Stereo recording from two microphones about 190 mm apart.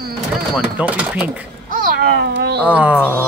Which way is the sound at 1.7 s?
45° right (ahead or behind).